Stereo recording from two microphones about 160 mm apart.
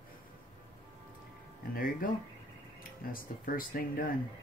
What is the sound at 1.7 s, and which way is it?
Speech, 65° left (ahead or behind).